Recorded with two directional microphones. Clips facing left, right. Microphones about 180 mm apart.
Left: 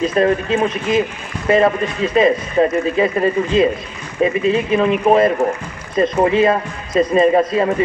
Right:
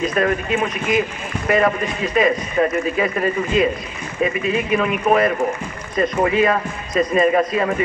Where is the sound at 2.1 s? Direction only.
30° left (ahead or behind).